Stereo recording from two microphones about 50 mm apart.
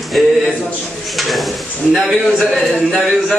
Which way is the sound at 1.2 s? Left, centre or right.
Centre.